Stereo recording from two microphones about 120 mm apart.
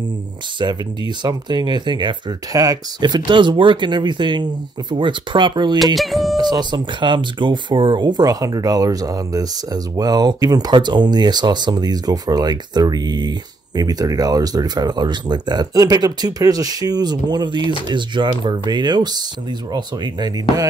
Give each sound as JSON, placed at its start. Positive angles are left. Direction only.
{"t": 0.6, "sound": "speech", "side_deg": -40}
{"t": 5.9, "sound": "speech", "side_deg": 0}
{"t": 6.5, "sound": "speech", "side_deg": -40}